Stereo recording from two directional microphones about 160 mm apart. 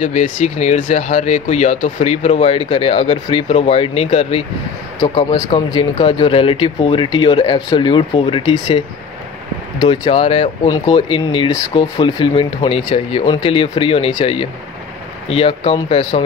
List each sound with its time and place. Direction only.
0.0 s speech: 50° left (ahead or behind)
5.0 s speech: 30° left (ahead or behind)
9.8 s speech: 35° left (ahead or behind)